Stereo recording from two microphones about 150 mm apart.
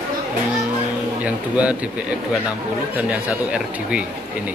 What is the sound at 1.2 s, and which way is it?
Speech, 10° right (ahead or behind).